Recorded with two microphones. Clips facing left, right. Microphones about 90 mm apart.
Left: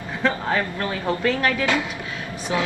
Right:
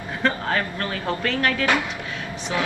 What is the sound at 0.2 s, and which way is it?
Speech, 15° left (ahead or behind).